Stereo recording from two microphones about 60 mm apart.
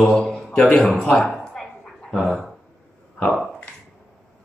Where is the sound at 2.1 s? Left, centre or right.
Centre.